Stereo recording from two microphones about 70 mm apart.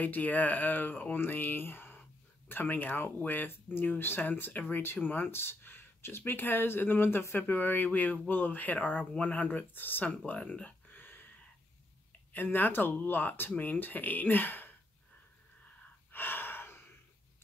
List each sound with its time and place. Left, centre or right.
0.0 s speech: left
12.3 s speech: left
16.1 s gasp: left